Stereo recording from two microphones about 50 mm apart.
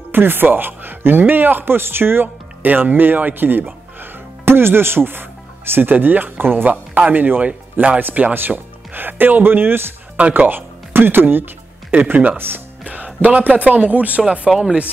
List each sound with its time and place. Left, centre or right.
0.1 s speech: right; by 14.9 s centre